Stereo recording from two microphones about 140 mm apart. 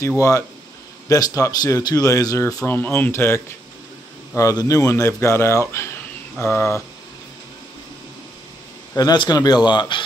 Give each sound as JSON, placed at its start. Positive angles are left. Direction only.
{"t": 1.0, "sound": "speech", "side_deg": 25}
{"t": 8.9, "sound": "speech", "side_deg": 30}